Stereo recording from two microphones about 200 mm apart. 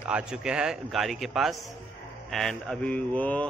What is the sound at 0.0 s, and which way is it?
A man's voice, 5° right (ahead or behind).